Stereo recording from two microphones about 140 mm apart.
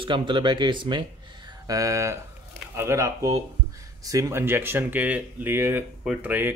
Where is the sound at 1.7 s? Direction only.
25° right (ahead or behind).